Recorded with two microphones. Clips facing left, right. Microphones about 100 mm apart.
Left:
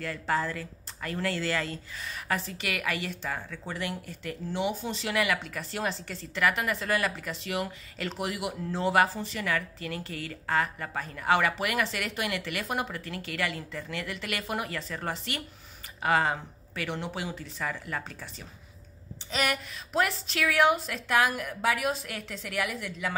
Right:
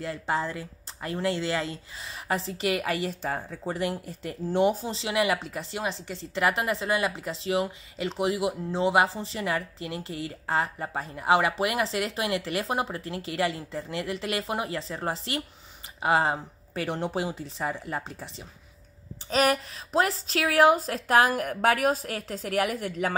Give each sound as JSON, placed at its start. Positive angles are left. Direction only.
{"t": 0.0, "sound": "speech", "side_deg": -25}
{"t": 4.5, "sound": "speech", "side_deg": -45}
{"t": 4.8, "sound": "a woman's voice", "side_deg": -25}
{"t": 19.3, "sound": "a woman's voice", "side_deg": -35}